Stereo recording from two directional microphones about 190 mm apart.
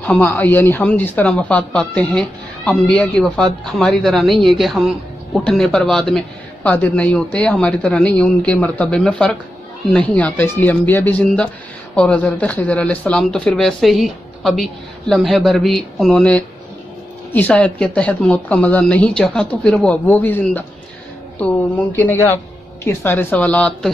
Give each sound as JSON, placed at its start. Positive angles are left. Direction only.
{"t": 0.0, "sound": "speech", "side_deg": 10}